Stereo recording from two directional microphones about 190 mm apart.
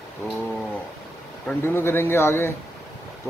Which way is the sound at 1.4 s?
10° left (ahead or behind).